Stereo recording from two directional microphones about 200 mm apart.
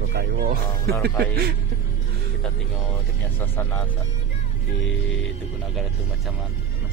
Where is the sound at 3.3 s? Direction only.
10° left (ahead or behind).